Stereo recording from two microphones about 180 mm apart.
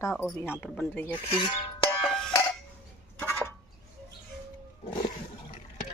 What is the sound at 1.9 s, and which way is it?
Music, 5° left (ahead or behind).